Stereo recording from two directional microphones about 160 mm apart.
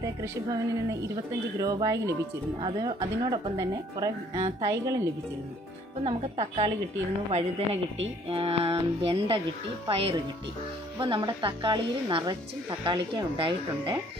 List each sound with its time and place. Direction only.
0.0 s speech: 20° right (ahead or behind)
1.6 s speech: 20° right (ahead or behind)
6.0 s a woman's voice: 40° right (ahead or behind)